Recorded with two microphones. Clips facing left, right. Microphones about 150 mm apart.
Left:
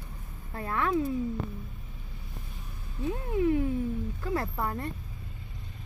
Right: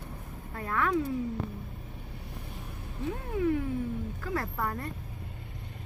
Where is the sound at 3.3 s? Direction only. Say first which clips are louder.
Left 2 dB; 25° left (ahead or behind).